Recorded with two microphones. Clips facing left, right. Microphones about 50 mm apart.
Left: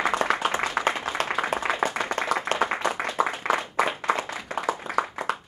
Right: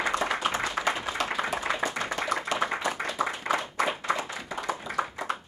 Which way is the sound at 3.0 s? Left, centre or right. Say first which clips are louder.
Left 4 dB; left.